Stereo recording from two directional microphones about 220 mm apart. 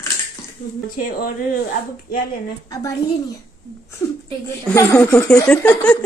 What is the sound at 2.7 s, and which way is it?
Speech, 15° left (ahead or behind).